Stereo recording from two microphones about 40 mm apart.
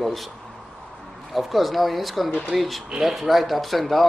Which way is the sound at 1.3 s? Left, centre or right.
Centre.